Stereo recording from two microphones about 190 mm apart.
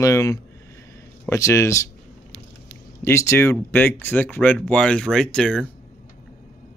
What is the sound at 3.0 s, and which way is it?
Speech, 15° left (ahead or behind).